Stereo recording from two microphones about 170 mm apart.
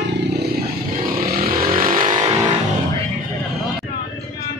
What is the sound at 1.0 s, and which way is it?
Vehicle, 60° right (ahead or behind).